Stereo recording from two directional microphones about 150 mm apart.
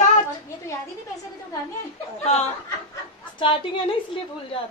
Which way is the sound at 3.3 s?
35° left (ahead or behind).